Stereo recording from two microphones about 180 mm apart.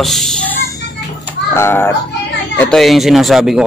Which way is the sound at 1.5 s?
10° left (ahead or behind).